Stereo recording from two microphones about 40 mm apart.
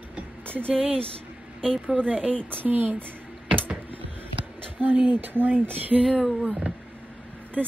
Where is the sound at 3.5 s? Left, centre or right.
Right.